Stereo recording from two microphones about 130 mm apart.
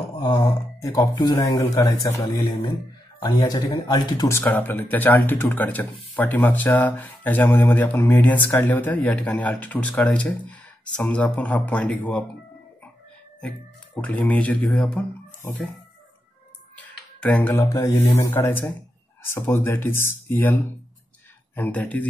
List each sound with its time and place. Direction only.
0.2 s speech: 35° left (ahead or behind)
4.3 s speech: 15° left (ahead or behind)
14.0 s speech: 10° left (ahead or behind)
16.7 s a sound: 10° left (ahead or behind)
17.6 s speech: 25° left (ahead or behind)